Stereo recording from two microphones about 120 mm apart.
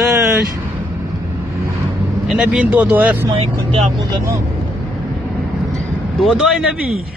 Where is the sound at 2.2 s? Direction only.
10° right (ahead or behind).